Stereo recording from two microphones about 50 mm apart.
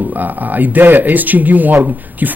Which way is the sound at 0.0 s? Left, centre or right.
Right.